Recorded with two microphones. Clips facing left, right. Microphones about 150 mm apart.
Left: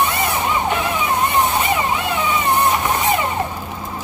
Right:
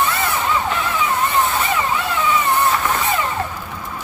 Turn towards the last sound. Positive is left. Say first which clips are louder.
# left 1 dB
turn(degrees=20)  # may be behind; listen again after turning